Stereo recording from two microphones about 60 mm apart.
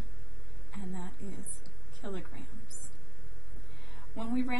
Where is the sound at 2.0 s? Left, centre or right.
Centre.